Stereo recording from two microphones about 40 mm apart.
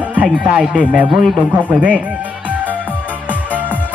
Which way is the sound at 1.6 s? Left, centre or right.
Right.